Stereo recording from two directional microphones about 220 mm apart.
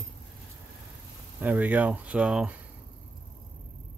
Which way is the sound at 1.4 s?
5° right (ahead or behind).